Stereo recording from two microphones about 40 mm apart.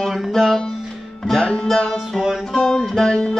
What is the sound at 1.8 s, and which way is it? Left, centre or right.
Music, centre.